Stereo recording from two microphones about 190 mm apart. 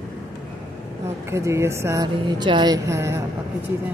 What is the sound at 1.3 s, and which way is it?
Speech, 15° right (ahead or behind).